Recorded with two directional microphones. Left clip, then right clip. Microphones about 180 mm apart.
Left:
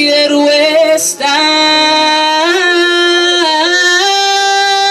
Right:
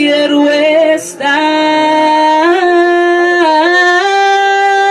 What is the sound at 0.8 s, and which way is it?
Female singing, 20° left (ahead or behind).